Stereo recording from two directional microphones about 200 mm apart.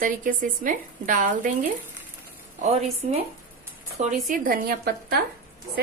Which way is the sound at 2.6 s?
35° right (ahead or behind).